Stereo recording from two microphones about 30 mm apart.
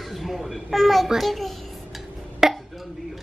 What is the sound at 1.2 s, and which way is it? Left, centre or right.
Speech, centre.